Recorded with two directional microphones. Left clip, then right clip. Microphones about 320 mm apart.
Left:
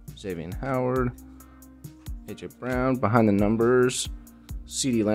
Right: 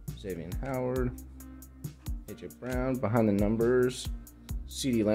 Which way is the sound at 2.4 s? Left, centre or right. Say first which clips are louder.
Left 7 dB; centre.